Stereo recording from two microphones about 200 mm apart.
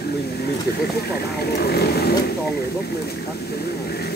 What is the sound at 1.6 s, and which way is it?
Speech, 50° left (ahead or behind).